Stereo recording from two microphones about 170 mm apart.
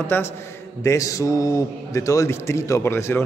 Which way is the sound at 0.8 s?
20° left (ahead or behind).